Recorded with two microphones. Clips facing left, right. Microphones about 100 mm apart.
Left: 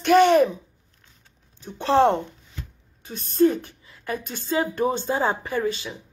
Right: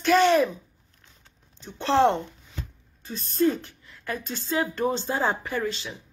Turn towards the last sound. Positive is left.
turn(degrees=15)  # may be behind; listen again after turning